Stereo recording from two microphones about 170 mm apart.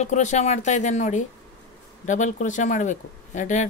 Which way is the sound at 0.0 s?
45° left (ahead or behind).